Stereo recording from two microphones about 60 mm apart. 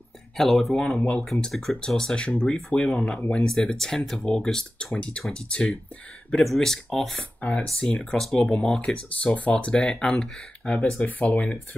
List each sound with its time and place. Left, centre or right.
0.4 s speech: centre
4.9 s speech: centre
6.4 s speech: centre
7.3 s speech: centre
11.1 s speech: left